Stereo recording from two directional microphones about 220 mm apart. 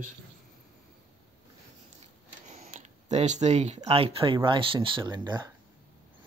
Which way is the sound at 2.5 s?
35° right (ahead or behind).